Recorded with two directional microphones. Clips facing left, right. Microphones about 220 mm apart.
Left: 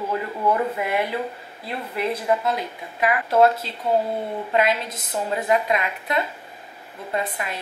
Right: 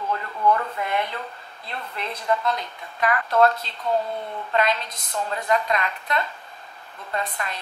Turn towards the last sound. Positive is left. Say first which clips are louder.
# left 3 dB
turn(degrees=10)  # may be behind; listen again after turning